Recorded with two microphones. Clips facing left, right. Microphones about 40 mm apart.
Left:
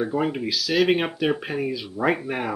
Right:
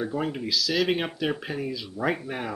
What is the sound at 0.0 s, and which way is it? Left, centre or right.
Speech, centre.